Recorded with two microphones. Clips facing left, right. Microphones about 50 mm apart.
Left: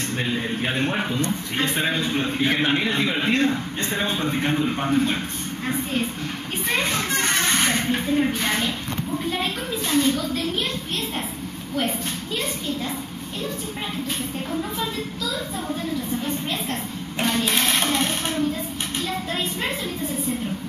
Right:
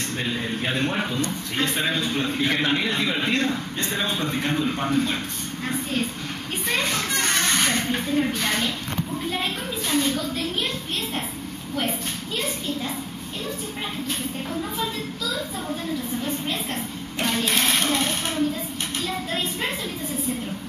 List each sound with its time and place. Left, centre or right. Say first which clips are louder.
0.2 s a man's voice: left 2 dB; centre
6.7 s children playing: left 1 dB; centre
8.4 s a man's voice: left 1 dB; centre
14.5 s a woman's voice: left 1 dB; centre
17.2 s printer: left 2 dB; centre
17.6 s a sound: left 1 dB; centre
18.9 s a woman's voice: left 1 dB; centre